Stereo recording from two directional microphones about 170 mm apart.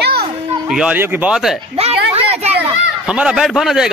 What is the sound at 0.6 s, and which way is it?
Speech, 5° right (ahead or behind).